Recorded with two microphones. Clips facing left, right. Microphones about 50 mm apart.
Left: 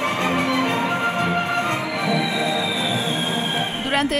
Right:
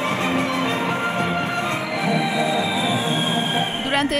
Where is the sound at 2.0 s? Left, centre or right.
Right.